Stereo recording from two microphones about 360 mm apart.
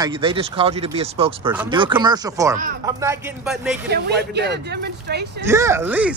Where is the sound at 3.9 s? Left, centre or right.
Right.